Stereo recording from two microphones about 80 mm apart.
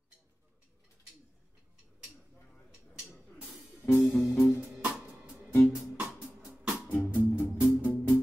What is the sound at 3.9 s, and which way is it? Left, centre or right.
Music, left.